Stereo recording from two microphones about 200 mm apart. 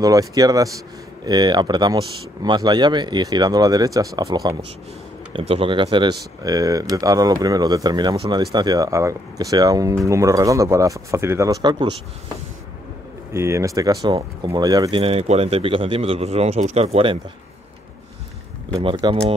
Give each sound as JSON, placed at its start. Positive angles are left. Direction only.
{"t": 0.0, "sound": "speech", "side_deg": -15}
{"t": 5.3, "sound": "speech", "side_deg": -30}
{"t": 13.3, "sound": "speech", "side_deg": -15}
{"t": 18.7, "sound": "speech", "side_deg": -25}